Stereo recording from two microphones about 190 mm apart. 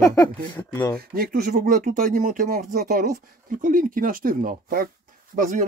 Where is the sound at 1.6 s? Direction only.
40° right (ahead or behind).